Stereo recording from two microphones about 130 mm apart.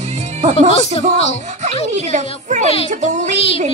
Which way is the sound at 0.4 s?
55° right (ahead or behind).